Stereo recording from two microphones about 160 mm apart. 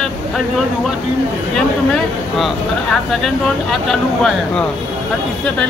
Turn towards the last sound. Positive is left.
turn(degrees=0)  # may be behind; listen again after turning